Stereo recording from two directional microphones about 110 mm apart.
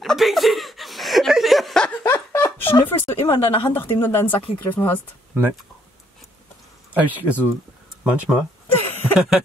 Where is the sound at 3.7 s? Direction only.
20° left (ahead or behind).